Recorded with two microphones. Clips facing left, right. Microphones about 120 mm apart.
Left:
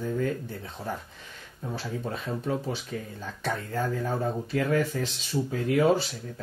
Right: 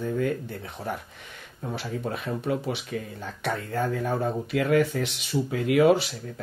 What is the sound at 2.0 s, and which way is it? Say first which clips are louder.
Speech: right 2 dB; 70° right (ahead or behind).